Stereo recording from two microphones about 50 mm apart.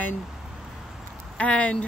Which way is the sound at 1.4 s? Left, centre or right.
Left.